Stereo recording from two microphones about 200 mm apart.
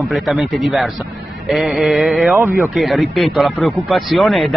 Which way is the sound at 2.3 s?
15° right (ahead or behind).